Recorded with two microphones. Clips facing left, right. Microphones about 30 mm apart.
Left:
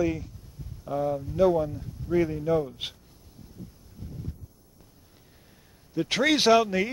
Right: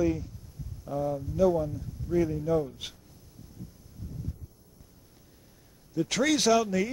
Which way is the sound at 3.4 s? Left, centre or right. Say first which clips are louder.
Left 2 dB; left.